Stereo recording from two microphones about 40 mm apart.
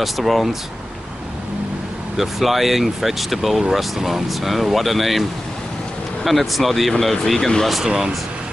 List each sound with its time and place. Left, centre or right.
0.0 s speech: centre
2.1 s speech: centre
6.2 s speech: centre
7.8 s speech: centre